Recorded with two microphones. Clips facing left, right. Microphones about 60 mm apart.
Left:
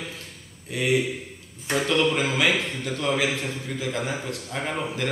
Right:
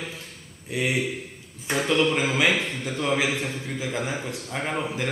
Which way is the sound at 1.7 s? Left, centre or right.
Centre.